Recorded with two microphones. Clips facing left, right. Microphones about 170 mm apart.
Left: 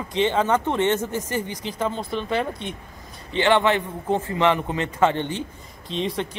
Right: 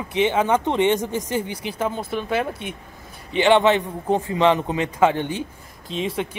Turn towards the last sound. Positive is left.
turn(degrees=0)  # may be behind; listen again after turning